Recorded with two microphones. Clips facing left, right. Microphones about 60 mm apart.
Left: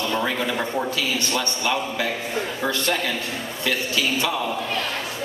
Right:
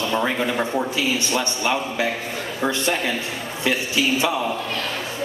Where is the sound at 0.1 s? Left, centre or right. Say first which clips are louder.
Right 3 dB; centre.